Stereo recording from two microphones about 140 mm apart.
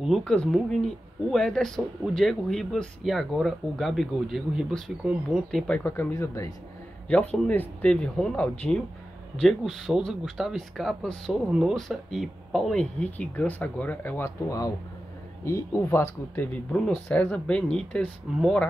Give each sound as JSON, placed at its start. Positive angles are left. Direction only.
{"t": 0.0, "sound": "speech", "side_deg": 0}
{"t": 5.8, "sound": "speech", "side_deg": 15}
{"t": 7.1, "sound": "speech", "side_deg": 10}
{"t": 16.7, "sound": "speech", "side_deg": 5}